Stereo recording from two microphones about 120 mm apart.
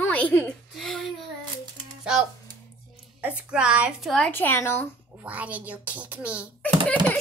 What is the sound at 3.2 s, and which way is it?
Speech, 10° right (ahead or behind).